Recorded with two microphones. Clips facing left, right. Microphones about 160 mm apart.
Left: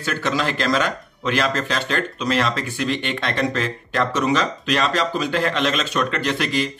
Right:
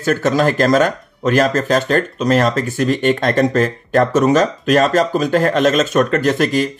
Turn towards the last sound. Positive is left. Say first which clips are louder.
# right 7 dB
turn(degrees=-45)  # may be behind; listen again after turning